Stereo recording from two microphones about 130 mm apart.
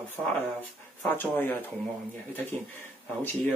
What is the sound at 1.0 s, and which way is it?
Speech, 15° left (ahead or behind).